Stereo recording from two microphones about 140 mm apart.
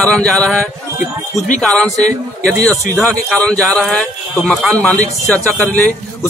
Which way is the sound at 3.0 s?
5° left (ahead or behind).